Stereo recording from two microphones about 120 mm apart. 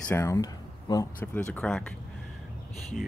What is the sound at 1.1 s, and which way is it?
Speech, 15° left (ahead or behind).